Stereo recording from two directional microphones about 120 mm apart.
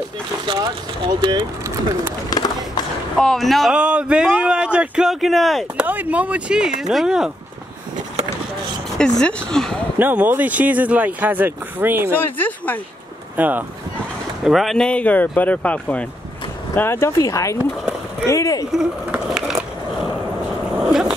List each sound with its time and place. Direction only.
1.0 s speech: 35° right (ahead or behind)
2.2 s a sound: 35° left (ahead or behind)
3.2 s speech: 5° left (ahead or behind)
5.9 s speech: 15° right (ahead or behind)
9.2 s speech: 5° left (ahead or behind)
9.9 s speech: 15° right (ahead or behind)
12.1 s speech: 15° left (ahead or behind)
13.4 s speech: 15° right (ahead or behind)
14.4 s speech: centre (ahead or behind); by 18.7 s 25° left (ahead or behind)
18.7 s skateboard: 5° right (ahead or behind)
20.8 s a sound: 5° right (ahead or behind)